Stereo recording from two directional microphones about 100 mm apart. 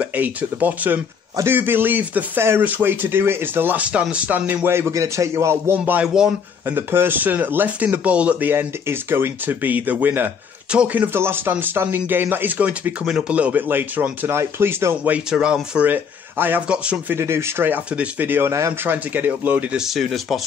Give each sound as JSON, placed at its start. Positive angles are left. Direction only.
{"t": 0.0, "sound": "speech", "side_deg": -15}
{"t": 15.1, "sound": "speech", "side_deg": -10}
{"t": 17.1, "sound": "speech", "side_deg": -25}
{"t": 19.8, "sound": "speech", "side_deg": 0}